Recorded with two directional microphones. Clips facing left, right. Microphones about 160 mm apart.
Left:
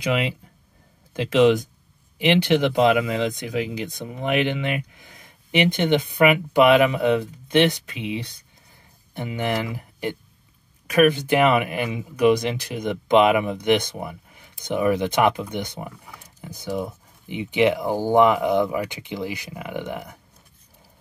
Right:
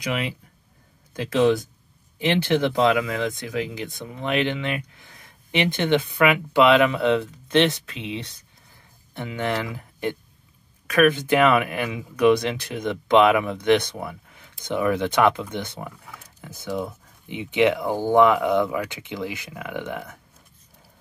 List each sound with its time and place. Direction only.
0.0 s speech: 25° left (ahead or behind)